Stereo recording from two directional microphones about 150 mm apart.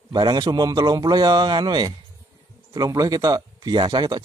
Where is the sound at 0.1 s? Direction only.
30° right (ahead or behind).